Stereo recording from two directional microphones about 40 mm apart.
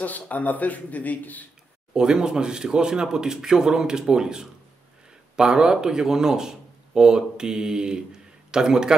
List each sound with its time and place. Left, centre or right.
0.0 s speech: left
2.0 s speech: centre